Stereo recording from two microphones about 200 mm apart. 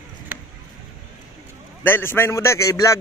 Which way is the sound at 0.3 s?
10° right (ahead or behind).